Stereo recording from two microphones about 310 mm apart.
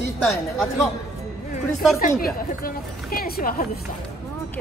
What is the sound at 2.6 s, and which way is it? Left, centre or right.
Speech, left.